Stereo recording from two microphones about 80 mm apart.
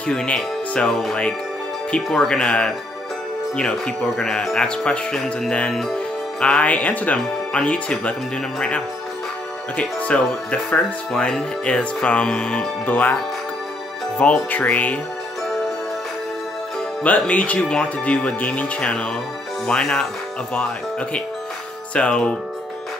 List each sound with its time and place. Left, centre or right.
0.0 s speech: centre
6.4 s speech: centre
17.0 s speech: centre